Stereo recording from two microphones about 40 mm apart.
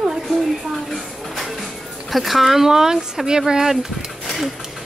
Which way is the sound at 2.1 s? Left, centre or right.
Centre.